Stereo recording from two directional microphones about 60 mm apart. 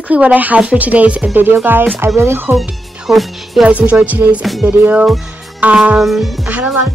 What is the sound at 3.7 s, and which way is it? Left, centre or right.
Speech, right.